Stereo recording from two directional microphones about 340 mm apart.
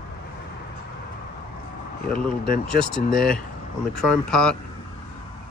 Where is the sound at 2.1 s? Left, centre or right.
Left.